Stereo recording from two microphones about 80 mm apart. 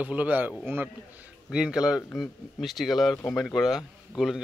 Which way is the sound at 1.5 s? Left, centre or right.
Centre.